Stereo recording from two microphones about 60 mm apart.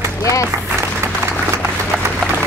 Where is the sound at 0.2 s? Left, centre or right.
Left.